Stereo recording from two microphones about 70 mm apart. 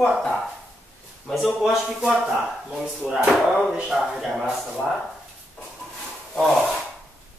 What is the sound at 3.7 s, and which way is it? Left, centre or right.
Speech, centre.